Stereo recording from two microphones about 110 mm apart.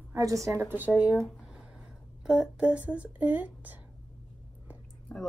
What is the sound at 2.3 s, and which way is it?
A woman's voice, 5° right (ahead or behind).